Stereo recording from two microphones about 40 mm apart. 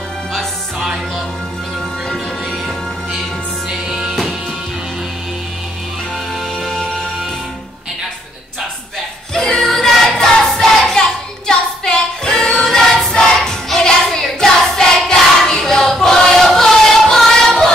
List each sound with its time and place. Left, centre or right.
3.7 s music: centre
6.6 s music: centre
9.3 s music: centre
10.4 s singing: centre
16.3 s music: centre